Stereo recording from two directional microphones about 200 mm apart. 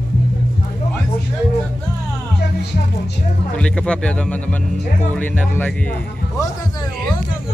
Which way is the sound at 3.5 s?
5° left (ahead or behind).